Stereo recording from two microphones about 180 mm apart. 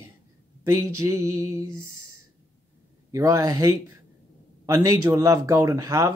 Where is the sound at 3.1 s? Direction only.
20° right (ahead or behind).